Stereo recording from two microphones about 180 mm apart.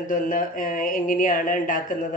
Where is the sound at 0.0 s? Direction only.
50° left (ahead or behind).